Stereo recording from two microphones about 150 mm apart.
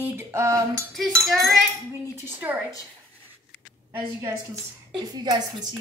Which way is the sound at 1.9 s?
10° right (ahead or behind).